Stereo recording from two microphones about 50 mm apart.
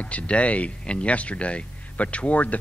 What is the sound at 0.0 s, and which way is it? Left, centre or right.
Speech, left.